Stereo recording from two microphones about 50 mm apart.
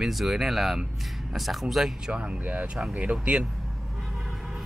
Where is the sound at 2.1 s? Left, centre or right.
Right.